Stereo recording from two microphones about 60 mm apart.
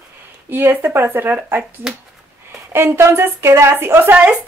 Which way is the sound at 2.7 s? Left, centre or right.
Right.